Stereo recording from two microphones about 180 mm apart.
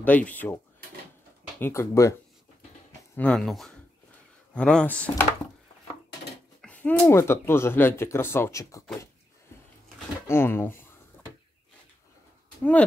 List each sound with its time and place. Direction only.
0.0 s speech: 10° left (ahead or behind)
1.6 s speech: 15° left (ahead or behind)
3.2 s speech: 5° left (ahead or behind)
6.6 s speech: 10° left (ahead or behind)
10.2 s speech: 15° left (ahead or behind)